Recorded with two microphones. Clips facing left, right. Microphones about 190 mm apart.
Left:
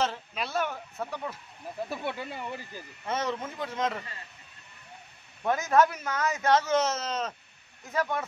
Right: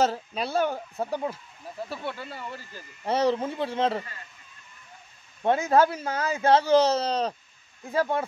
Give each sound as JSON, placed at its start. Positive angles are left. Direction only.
{"t": 0.0, "sound": "a man's voice", "side_deg": -35}
{"t": 1.9, "sound": "speech", "side_deg": 15}
{"t": 3.1, "sound": "a man's voice", "side_deg": -30}
{"t": 5.4, "sound": "a man's voice", "side_deg": -30}